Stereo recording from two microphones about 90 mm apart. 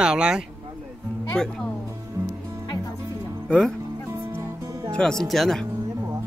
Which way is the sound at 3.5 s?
5° left (ahead or behind).